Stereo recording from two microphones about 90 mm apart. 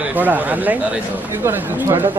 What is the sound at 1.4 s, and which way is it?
Speech, 30° right (ahead or behind).